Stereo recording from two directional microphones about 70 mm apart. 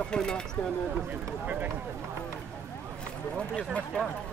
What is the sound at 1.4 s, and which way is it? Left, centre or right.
Speech, right.